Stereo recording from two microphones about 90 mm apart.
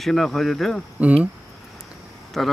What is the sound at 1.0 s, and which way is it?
Speech, 15° right (ahead or behind).